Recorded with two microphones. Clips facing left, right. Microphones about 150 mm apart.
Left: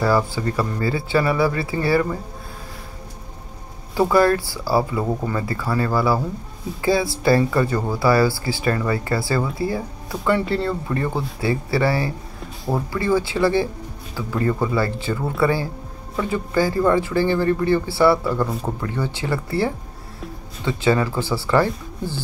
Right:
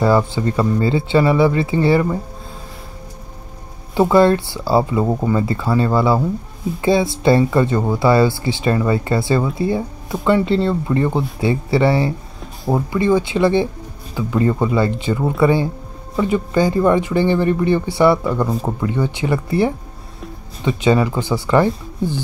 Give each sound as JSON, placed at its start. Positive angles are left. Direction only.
{"t": 0.0, "sound": "speech", "side_deg": -20}
{"t": 3.9, "sound": "speech", "side_deg": -25}